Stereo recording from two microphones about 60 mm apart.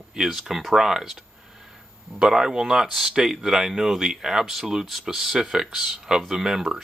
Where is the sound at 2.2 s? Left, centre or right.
Centre.